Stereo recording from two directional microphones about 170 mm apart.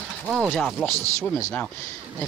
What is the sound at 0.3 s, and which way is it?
Speech, centre (ahead or behind).